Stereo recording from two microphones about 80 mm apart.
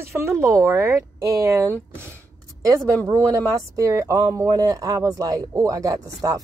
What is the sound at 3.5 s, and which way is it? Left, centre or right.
Speech, right.